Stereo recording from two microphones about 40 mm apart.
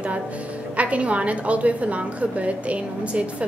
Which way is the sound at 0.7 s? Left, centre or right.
Right.